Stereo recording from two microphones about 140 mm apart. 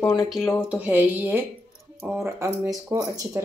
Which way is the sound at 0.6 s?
10° right (ahead or behind).